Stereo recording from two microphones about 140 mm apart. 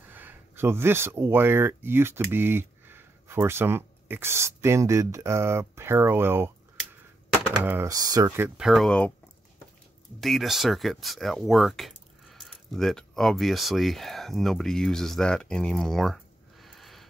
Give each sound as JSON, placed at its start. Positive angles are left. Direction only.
{"t": 0.1, "sound": "speech", "side_deg": -15}
{"t": 7.9, "sound": "speech", "side_deg": -25}
{"t": 8.5, "sound": "speech", "side_deg": 0}
{"t": 10.2, "sound": "speech", "side_deg": 0}